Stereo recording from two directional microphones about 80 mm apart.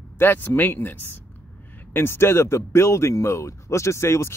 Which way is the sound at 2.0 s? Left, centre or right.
Left.